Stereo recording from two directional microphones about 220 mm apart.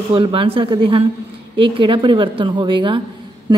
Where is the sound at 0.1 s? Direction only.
25° right (ahead or behind).